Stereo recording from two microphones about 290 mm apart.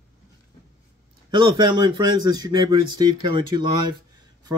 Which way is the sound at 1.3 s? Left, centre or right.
Centre.